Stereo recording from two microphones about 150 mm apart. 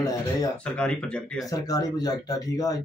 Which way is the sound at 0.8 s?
5° left (ahead or behind).